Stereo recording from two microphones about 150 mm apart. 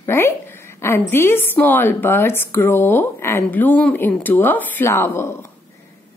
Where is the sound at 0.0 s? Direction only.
15° left (ahead or behind).